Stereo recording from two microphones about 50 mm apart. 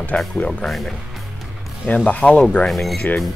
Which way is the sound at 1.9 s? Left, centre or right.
Left.